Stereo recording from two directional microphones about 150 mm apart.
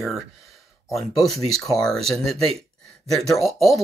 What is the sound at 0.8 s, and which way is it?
Speech, centre (ahead or behind).